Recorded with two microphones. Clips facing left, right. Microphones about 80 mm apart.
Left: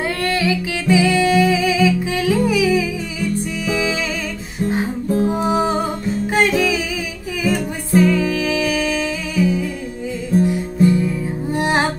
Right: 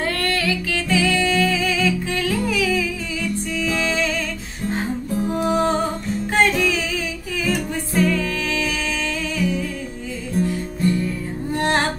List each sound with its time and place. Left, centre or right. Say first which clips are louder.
0.0 s music: left 3 dB; centre
5.3 s music: left 1 dB; centre